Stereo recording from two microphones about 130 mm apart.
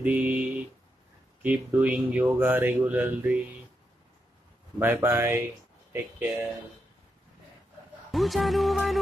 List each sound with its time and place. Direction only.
0.0 s a sound: 10° right (ahead or behind)
1.4 s speech: 10° right (ahead or behind)
4.7 s speech: 15° right (ahead or behind)
8.1 s music: centre (ahead or behind)